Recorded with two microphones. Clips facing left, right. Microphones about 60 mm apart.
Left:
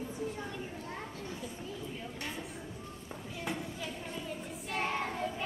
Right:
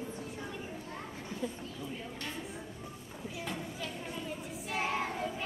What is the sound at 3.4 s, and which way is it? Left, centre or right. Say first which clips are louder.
Child singing: left 3 dB; centre.